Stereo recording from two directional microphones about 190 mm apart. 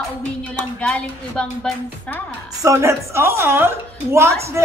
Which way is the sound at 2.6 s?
15° right (ahead or behind).